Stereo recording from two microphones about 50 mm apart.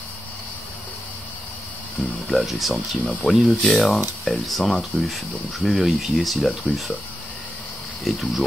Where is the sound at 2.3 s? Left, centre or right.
Centre.